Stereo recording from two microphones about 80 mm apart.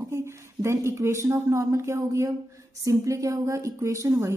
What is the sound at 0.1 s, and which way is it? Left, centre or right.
A woman's voice, right.